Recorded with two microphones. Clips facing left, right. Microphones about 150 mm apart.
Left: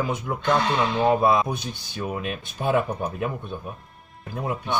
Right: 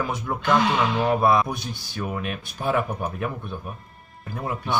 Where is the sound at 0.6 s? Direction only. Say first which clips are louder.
Right 1 dB; 10° right (ahead or behind).